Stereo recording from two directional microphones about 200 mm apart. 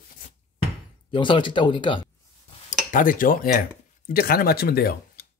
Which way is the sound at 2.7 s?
40° left (ahead or behind).